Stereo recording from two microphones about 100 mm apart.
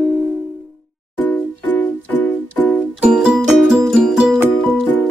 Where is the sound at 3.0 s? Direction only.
10° right (ahead or behind).